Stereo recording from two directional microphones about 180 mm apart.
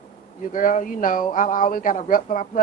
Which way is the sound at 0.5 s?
50° left (ahead or behind).